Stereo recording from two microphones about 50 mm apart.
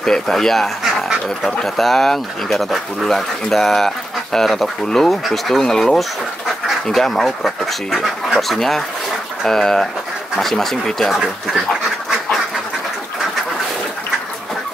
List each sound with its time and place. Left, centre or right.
0.0 s speech: centre